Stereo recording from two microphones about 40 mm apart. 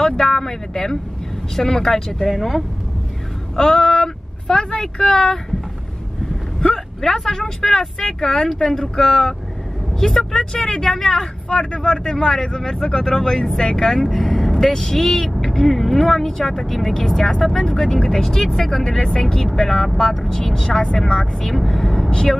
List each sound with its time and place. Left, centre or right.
0.0 s speech: centre
2.1 s speech: centre
3.5 s speech: centre
7.0 s speech: centre
11.4 s speech: left